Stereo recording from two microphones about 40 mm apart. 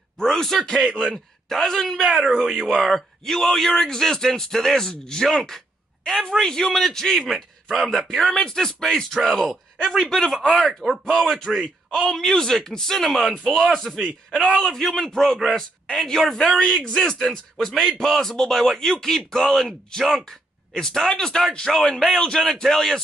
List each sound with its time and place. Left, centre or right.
0.2 s a man's voice: centre
7.7 s speech: centre
11.1 s speech: centre